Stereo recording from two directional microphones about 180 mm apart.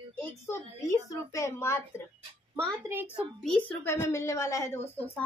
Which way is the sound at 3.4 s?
5° left (ahead or behind).